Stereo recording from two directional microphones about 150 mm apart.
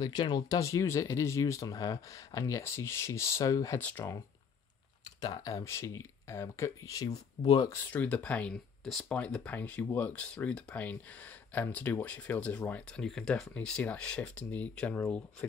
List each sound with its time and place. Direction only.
0.0 s speech: 30° left (ahead or behind)
5.2 s speech: 25° left (ahead or behind)
7.9 s speech: 10° left (ahead or behind)